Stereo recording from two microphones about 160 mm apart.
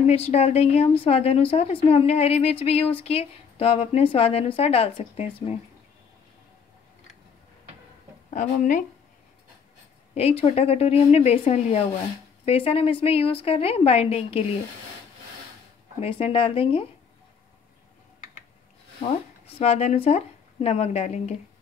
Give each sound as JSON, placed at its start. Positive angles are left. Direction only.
{"t": 0.0, "sound": "a woman's voice", "side_deg": 40}
{"t": 8.3, "sound": "speech", "side_deg": 50}
{"t": 10.1, "sound": "a woman's voice", "side_deg": 40}
{"t": 16.0, "sound": "a woman's voice", "side_deg": 35}
{"t": 19.6, "sound": "a woman's voice", "side_deg": 40}